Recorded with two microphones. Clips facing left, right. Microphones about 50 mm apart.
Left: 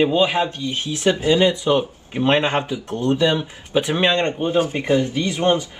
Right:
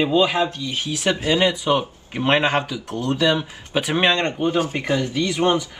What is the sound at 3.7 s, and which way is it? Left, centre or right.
Speech, right.